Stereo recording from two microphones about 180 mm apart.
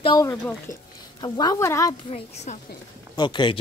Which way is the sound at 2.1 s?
40° left (ahead or behind).